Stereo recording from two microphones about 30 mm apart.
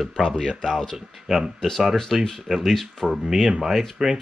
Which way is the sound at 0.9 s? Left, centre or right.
Centre.